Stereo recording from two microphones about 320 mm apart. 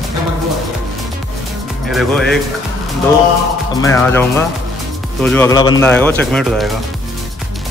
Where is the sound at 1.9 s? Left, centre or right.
Centre.